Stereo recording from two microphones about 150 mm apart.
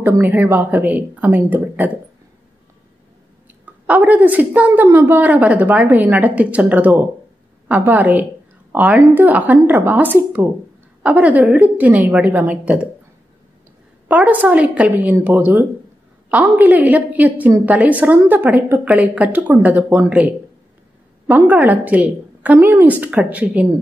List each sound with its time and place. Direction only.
0.0 s a woman's voice: 15° right (ahead or behind)
3.6 s a woman's voice: 10° right (ahead or behind)
14.0 s a woman's voice: 10° right (ahead or behind)
21.3 s a woman's voice: 10° right (ahead or behind)